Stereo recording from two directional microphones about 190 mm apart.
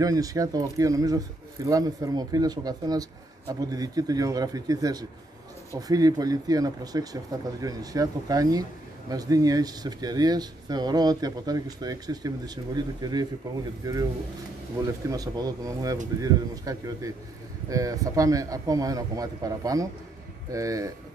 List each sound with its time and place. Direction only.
0.0 s a man's voice: 20° right (ahead or behind)